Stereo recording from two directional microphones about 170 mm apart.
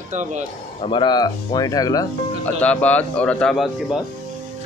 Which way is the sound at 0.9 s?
25° left (ahead or behind).